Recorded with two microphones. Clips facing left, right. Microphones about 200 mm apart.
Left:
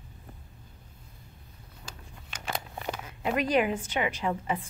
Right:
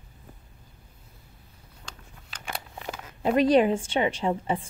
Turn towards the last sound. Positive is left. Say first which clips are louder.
# right 3 dB
turn(degrees=-30)  # may be behind; listen again after turning